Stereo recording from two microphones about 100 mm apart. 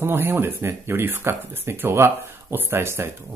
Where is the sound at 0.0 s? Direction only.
25° right (ahead or behind).